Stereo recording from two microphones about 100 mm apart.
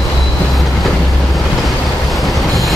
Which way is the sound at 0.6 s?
Centre (ahead or behind).